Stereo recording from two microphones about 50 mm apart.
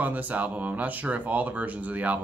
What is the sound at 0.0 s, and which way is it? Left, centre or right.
Speech, right.